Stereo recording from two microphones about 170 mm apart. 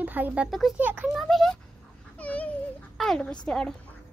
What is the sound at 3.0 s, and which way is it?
Speech, 5° left (ahead or behind).